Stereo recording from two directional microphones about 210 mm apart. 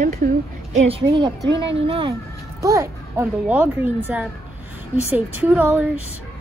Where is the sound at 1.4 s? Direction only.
55° right (ahead or behind).